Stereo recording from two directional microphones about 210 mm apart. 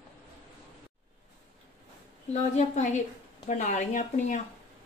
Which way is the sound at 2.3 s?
35° left (ahead or behind).